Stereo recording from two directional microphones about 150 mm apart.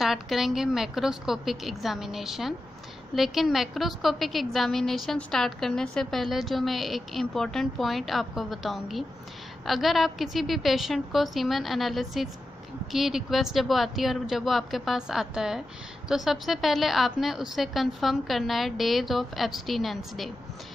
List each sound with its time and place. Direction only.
0.0 s a woman's voice: centre (ahead or behind)